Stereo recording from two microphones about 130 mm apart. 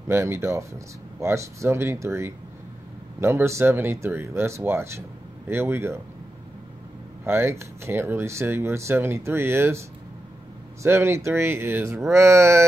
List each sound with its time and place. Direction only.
0.1 s speech: 20° right (ahead or behind)
7.2 s speech: 20° right (ahead or behind)
10.8 s speech: 20° right (ahead or behind)